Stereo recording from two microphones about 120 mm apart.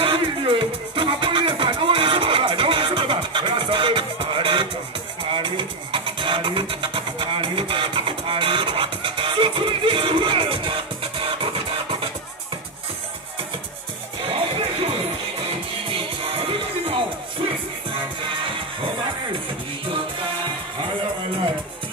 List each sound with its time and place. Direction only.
0.0 s music: 45° right (ahead or behind)
5.3 s vehicle: 45° right (ahead or behind)
15.9 s music: 50° right (ahead or behind)